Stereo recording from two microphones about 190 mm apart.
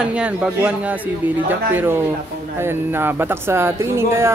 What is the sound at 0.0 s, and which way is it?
Speech, 5° right (ahead or behind).